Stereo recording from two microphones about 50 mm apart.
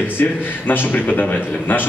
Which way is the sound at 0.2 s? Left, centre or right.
Left.